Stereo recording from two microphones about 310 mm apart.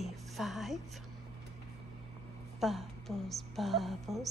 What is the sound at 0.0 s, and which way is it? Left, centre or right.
Music, centre.